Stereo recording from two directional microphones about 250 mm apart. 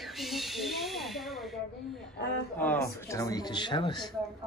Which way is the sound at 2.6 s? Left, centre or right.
Centre.